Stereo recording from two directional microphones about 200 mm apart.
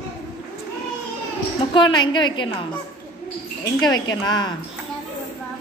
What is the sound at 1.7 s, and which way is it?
Speech, 25° left (ahead or behind).